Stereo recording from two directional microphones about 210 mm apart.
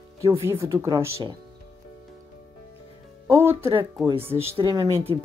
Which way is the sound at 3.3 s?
10° right (ahead or behind).